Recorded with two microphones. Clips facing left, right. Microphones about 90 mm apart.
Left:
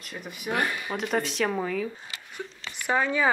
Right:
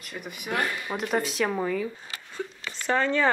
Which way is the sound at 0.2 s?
20° right (ahead or behind).